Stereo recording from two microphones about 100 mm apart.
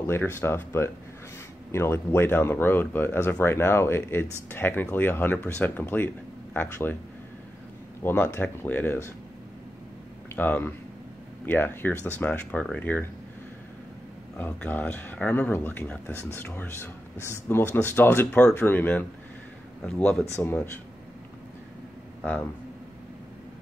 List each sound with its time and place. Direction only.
0.0 s speech: 25° left (ahead or behind)
8.0 s speech: 20° left (ahead or behind)
10.3 s speech: 20° left (ahead or behind)
14.4 s speech: 15° left (ahead or behind)
20.3 s speech: 25° left (ahead or behind)